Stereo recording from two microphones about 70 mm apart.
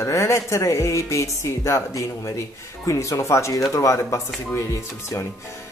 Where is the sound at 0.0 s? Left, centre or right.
Left.